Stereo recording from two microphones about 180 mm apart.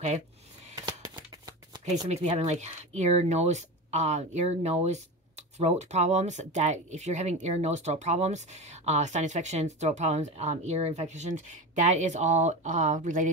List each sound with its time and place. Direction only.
0.8 s shuffling cards: 20° right (ahead or behind)
2.0 s speech: 35° right (ahead or behind)